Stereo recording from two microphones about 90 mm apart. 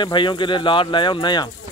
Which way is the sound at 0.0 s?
60° left (ahead or behind).